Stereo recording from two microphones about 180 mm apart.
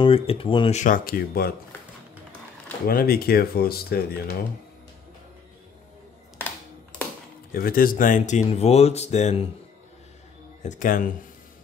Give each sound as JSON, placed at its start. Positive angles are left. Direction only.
{"t": 0.0, "sound": "speech", "side_deg": 30}
{"t": 0.7, "sound": "speech", "side_deg": 50}
{"t": 2.9, "sound": "speech", "side_deg": 55}
{"t": 6.4, "sound": "computer keyboard", "side_deg": 10}
{"t": 7.5, "sound": "speech", "side_deg": 55}
{"t": 10.6, "sound": "speech", "side_deg": 45}